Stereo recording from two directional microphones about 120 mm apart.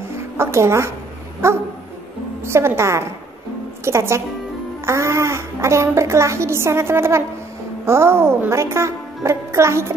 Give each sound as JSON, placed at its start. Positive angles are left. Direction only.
{"t": 0.4, "sound": "a woman's voice", "side_deg": -20}